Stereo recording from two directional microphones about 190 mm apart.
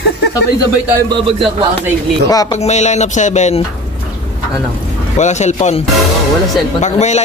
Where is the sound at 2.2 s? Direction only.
20° left (ahead or behind).